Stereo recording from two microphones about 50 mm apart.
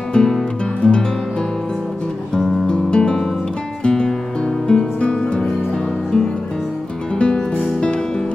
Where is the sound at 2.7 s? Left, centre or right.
Centre.